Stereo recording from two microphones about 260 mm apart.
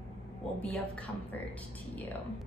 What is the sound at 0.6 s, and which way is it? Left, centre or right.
Speech, centre.